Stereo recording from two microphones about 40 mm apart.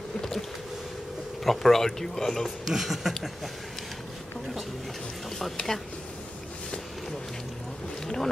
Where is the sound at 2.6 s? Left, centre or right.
Centre.